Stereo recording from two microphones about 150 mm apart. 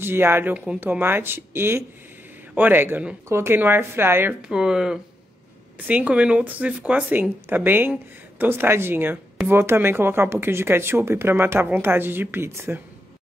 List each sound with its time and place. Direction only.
0.0 s speech: 15° right (ahead or behind)